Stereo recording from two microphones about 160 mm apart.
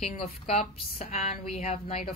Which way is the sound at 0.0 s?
40° left (ahead or behind).